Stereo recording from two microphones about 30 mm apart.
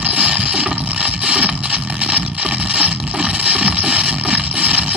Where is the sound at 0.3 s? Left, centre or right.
Right.